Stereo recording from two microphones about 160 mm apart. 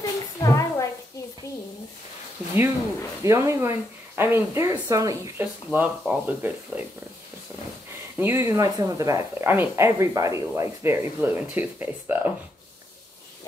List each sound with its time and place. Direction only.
0.0 s a sound: 25° left (ahead or behind)
3.3 s speech: 15° right (ahead or behind)
8.2 s speech: 15° right (ahead or behind)